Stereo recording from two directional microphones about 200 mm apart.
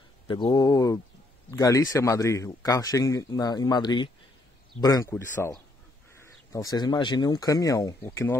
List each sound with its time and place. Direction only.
0.3 s a man's voice: 25° left (ahead or behind)